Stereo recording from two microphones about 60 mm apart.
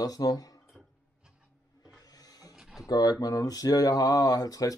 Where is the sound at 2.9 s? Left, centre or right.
Left.